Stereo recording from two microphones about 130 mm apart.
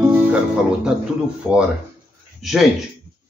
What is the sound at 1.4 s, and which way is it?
Speech, 10° right (ahead or behind).